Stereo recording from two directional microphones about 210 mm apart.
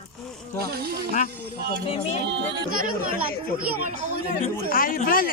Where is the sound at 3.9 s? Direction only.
35° right (ahead or behind).